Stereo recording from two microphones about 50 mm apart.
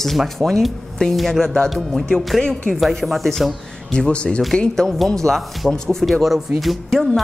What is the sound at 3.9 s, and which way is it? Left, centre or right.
A woman's voice, left.